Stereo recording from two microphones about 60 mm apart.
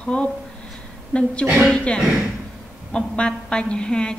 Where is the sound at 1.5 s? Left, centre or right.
Centre.